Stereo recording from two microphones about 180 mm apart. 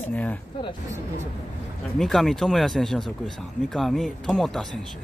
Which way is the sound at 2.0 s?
Centre (ahead or behind).